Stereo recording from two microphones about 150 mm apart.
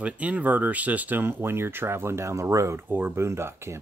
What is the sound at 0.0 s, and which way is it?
Speech, 10° right (ahead or behind).